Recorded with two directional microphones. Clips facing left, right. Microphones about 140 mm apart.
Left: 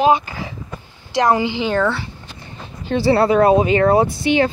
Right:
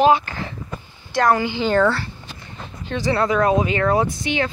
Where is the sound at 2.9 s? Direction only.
35° left (ahead or behind).